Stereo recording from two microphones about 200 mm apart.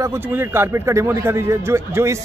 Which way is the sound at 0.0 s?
10° right (ahead or behind).